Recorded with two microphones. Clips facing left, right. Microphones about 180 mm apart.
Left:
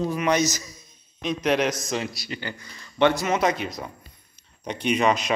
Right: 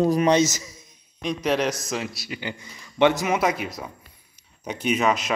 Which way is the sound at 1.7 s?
5° right (ahead or behind).